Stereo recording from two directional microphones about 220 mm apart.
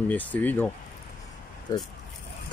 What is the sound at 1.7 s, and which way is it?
Speech, 15° left (ahead or behind).